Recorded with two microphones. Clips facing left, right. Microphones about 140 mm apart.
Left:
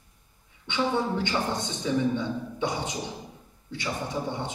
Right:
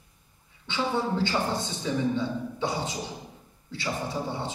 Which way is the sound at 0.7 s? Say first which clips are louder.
Left 1 dB; 20° left (ahead or behind).